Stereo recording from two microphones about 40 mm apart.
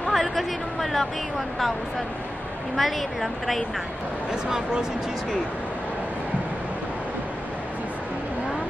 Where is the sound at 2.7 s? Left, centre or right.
Centre.